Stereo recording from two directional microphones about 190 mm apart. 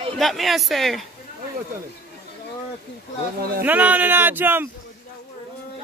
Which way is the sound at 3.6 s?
10° right (ahead or behind).